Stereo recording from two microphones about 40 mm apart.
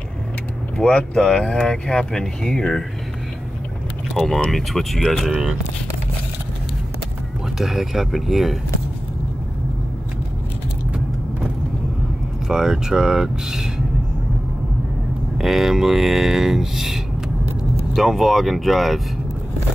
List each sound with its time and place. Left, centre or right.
0.7 s speech: left
4.5 s speech: centre
7.5 s speech: centre
12.4 s speech: centre
15.3 s speech: centre